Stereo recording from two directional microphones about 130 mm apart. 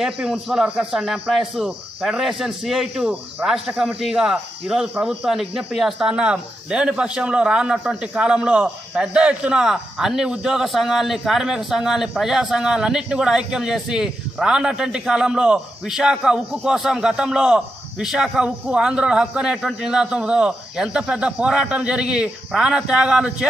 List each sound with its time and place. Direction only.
0.0 s a man's voice: 5° right (ahead or behind)